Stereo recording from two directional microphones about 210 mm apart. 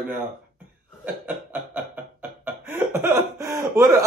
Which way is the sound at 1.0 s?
10° right (ahead or behind).